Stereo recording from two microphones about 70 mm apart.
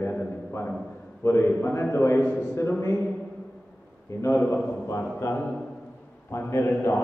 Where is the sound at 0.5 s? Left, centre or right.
Left.